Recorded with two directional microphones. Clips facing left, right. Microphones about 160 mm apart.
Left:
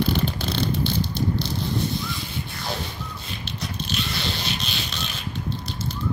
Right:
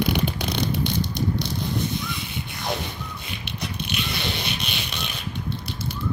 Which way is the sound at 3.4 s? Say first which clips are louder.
Even; 60° right (ahead or behind).